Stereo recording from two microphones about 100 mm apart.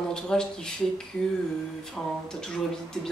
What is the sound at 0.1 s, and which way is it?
Speech, 5° left (ahead or behind).